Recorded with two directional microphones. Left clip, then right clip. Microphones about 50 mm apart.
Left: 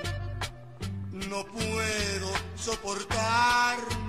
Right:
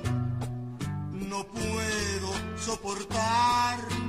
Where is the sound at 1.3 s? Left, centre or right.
Right.